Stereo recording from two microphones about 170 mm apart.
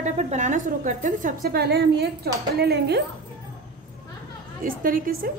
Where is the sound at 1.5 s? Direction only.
70° right (ahead or behind).